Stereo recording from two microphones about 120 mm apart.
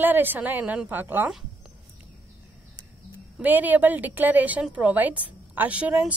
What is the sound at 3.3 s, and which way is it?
A woman's voice, 15° right (ahead or behind).